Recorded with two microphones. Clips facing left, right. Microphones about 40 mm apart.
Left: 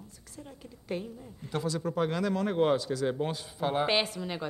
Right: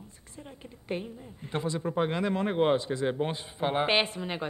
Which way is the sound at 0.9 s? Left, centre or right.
Right.